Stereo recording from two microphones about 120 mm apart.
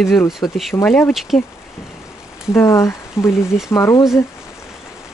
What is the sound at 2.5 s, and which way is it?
Speech, 25° left (ahead or behind).